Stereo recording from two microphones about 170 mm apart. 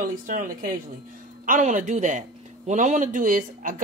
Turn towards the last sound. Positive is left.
turn(degrees=-55)  # may be behind; listen again after turning